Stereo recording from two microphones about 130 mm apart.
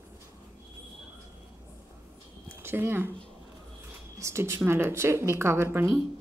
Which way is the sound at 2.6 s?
20° right (ahead or behind).